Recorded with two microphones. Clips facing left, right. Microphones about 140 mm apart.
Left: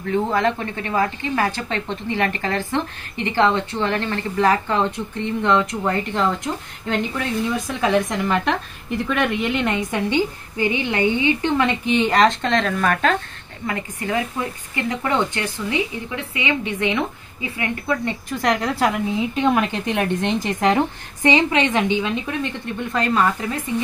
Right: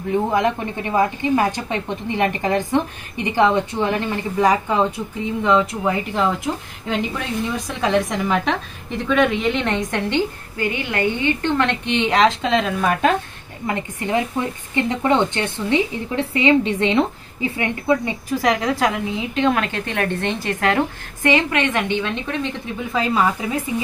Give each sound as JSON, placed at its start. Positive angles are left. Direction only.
{"t": 0.1, "sound": "a woman's voice", "side_deg": -15}
{"t": 13.7, "sound": "speech", "side_deg": -25}
{"t": 18.4, "sound": "a woman's voice", "side_deg": 0}